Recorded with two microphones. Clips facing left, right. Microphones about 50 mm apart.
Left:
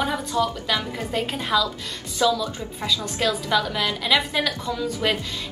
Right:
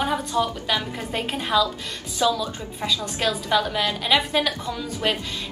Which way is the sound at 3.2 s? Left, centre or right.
Centre.